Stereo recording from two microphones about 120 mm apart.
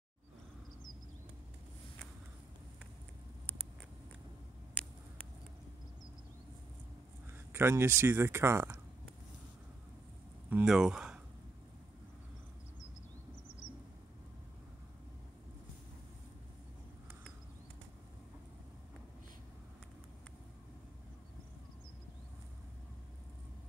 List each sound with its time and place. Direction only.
7.5 s speech: 20° right (ahead or behind)
10.5 s speech: 5° right (ahead or behind)